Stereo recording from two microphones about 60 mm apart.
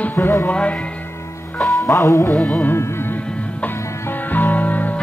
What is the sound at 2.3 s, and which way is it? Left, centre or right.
Music, centre.